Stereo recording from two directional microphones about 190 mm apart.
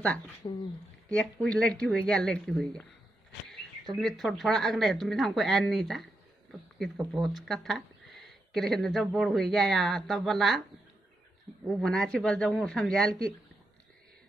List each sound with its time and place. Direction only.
0.4 s speech: 25° left (ahead or behind)
1.1 s speech: 5° left (ahead or behind)
3.4 s a sound: centre (ahead or behind)
4.0 s speech: centre (ahead or behind)
7.1 s speech: centre (ahead or behind)
11.6 s speech: 5° left (ahead or behind)